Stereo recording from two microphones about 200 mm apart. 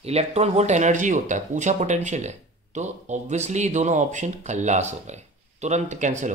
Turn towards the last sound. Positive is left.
turn(degrees=-35)  # may be behind; listen again after turning